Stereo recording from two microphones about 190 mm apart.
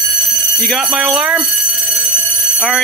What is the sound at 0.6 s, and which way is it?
Speech, centre (ahead or behind).